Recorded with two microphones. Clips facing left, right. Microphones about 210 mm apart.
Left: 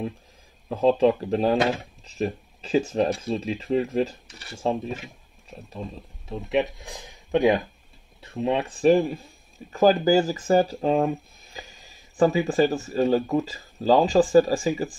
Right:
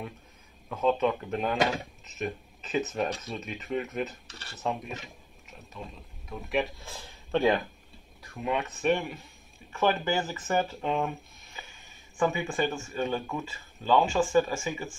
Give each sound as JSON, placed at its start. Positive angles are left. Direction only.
{"t": 0.7, "sound": "speech", "side_deg": 30}
{"t": 4.3, "sound": "speech", "side_deg": 10}
{"t": 4.6, "sound": "speech", "side_deg": 30}
{"t": 8.2, "sound": "speech", "side_deg": 25}